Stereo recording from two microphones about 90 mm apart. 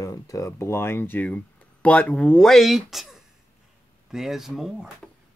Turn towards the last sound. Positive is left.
turn(degrees=-5)  # may be behind; listen again after turning